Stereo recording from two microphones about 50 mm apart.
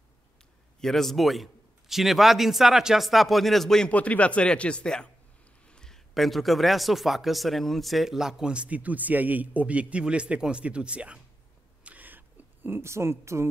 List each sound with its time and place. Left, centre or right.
0.7 s a man's voice: centre
3.9 s speech: left
5.7 s a sound: centre
6.1 s a man's voice: centre
8.6 s a man's voice: right
11.8 s a sound: right
12.9 s speech: right